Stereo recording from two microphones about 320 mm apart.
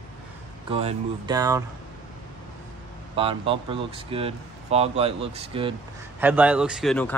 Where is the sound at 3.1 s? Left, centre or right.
Centre.